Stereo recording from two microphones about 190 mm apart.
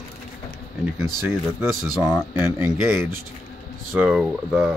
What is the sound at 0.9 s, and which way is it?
Speech, centre (ahead or behind).